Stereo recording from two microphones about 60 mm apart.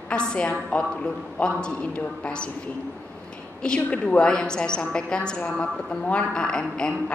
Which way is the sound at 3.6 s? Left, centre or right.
Centre.